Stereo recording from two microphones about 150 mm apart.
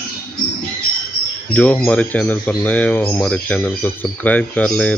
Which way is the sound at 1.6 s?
10° left (ahead or behind).